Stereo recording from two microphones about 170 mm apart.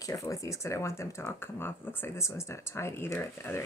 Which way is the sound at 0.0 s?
20° left (ahead or behind).